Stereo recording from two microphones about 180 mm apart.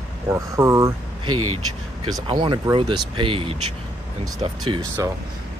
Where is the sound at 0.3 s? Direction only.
15° right (ahead or behind).